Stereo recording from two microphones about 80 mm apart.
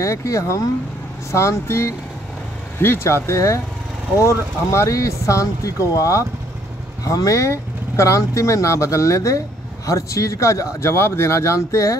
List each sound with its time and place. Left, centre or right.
0.0 s speech: left